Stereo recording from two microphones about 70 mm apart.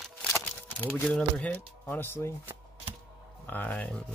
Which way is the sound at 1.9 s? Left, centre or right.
Left.